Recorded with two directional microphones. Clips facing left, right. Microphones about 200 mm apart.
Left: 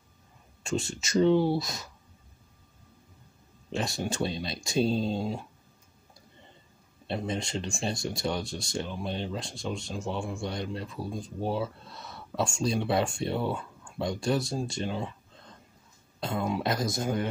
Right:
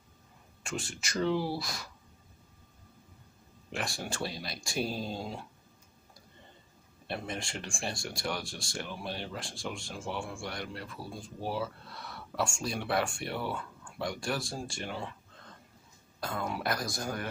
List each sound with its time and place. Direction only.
0.7 s speech: 25° left (ahead or behind)
3.7 s speech: 20° left (ahead or behind)
7.1 s speech: 20° left (ahead or behind)
16.2 s speech: 20° left (ahead or behind)